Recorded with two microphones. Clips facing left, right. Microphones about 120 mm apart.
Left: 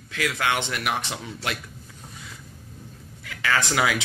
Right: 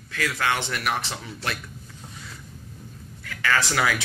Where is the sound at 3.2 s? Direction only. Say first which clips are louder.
Right 1 dB; 15° left (ahead or behind).